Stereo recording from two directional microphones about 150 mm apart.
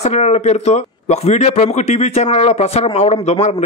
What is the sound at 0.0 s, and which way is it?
A man's voice, 50° left (ahead or behind).